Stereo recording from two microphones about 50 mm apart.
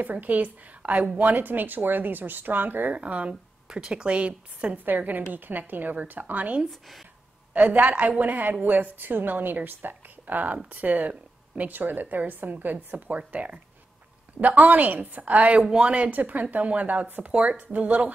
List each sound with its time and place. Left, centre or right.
0.0 s a woman's voice: right
3.0 s speech: right
4.8 s a woman's voice: right
6.6 s speech: centre
7.5 s a woman's voice: right